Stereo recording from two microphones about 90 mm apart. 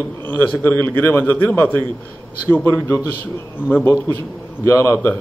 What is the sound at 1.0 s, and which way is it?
Speech, 25° left (ahead or behind).